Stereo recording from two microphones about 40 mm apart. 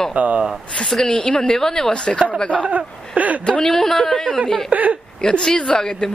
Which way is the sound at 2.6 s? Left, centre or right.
Right.